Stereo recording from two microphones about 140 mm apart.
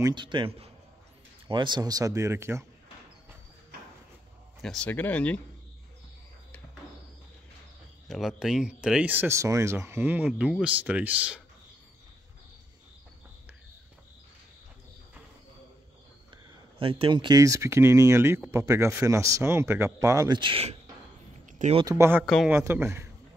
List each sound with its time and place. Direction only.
0.0 s a man's voice: 35° right (ahead or behind); by 2.6 s 20° right (ahead or behind)
4.6 s speech: 5° left (ahead or behind)
8.1 s speech: centre (ahead or behind)
16.8 s speech: 35° right (ahead or behind)
20.3 s a man's voice: 35° right (ahead or behind)
21.5 s a sound: 65° right (ahead or behind)
21.9 s speech: 20° right (ahead or behind)
22.2 s speech: centre (ahead or behind)
22.5 s speech: 15° right (ahead or behind)